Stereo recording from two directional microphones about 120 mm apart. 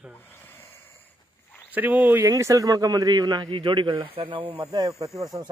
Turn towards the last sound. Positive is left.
turn(degrees=-30)  # may be behind; listen again after turning